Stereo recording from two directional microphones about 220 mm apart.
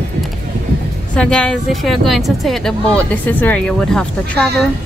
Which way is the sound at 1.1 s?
5° left (ahead or behind).